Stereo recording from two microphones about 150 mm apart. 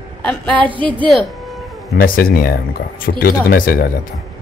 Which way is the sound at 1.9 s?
75° left (ahead or behind).